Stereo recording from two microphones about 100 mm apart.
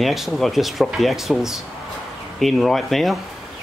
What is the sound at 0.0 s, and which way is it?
Speech, centre (ahead or behind).